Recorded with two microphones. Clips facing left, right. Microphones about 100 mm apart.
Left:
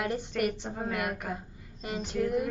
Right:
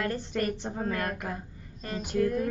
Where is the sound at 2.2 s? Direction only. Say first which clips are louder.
Right 1 dB; 15° left (ahead or behind).